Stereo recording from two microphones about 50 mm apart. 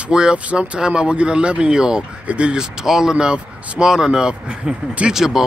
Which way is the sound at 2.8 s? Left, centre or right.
Centre.